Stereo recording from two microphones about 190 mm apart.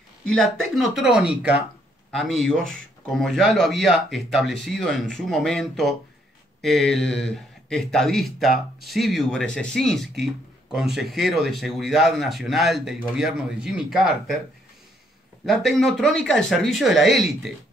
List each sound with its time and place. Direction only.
0.3 s speech: centre (ahead or behind)
15.4 s speech: centre (ahead or behind)